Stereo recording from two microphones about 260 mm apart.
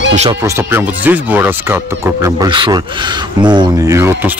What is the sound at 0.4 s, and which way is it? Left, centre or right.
Speech, centre.